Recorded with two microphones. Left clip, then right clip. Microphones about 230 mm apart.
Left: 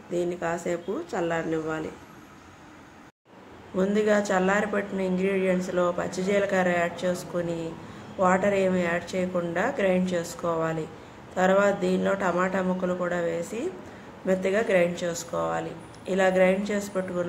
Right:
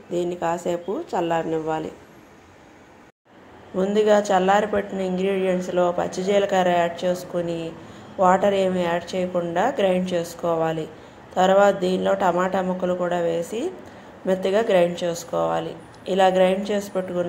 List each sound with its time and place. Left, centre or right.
0.1 s a woman's voice: centre
3.7 s a woman's voice: centre